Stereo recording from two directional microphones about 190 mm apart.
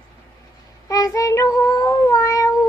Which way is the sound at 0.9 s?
15° left (ahead or behind).